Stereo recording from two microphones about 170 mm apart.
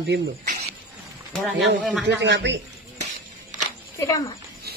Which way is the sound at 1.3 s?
Centre (ahead or behind).